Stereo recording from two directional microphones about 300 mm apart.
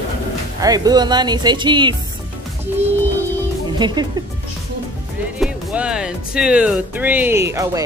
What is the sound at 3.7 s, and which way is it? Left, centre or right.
Speech, centre.